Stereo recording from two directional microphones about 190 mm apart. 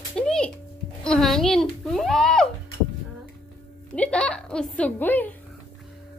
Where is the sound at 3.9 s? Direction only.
5° left (ahead or behind).